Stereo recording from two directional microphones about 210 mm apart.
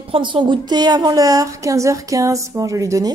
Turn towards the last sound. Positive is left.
turn(degrees=-15)  # may be behind; listen again after turning